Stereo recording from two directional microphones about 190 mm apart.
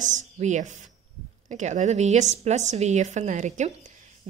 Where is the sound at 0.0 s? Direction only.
40° right (ahead or behind).